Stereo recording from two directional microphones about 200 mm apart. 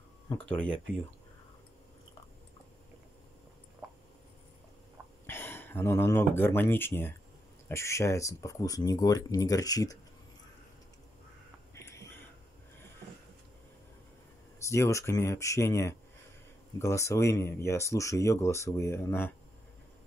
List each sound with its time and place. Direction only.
0.5 s speech: 5° left (ahead or behind)
5.2 s speech: 10° left (ahead or behind)
11.7 s a sound: 15° left (ahead or behind)
14.6 s speech: 15° left (ahead or behind)